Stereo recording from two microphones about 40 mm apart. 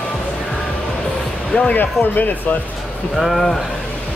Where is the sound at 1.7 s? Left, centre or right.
Left.